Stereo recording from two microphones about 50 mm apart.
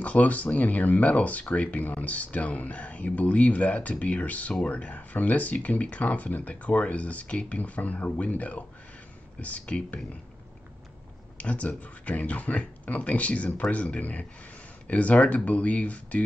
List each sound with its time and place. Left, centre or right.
0.0 s speech: left
11.3 s speech: left